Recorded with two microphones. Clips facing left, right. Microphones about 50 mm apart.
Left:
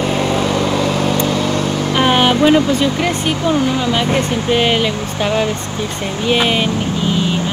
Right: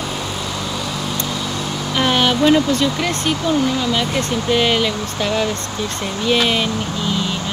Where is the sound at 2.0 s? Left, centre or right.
Centre.